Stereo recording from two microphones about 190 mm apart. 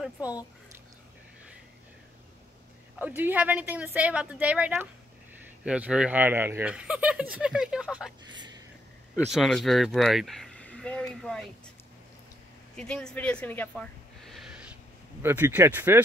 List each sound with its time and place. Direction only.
0.0 s speech: 5° right (ahead or behind)
3.0 s a woman's voice: 10° right (ahead or behind)
8.3 s a sound: 20° right (ahead or behind)
9.3 s speech: centre (ahead or behind)
12.7 s a woman's voice: 5° left (ahead or behind); by 16.0 s 10° right (ahead or behind)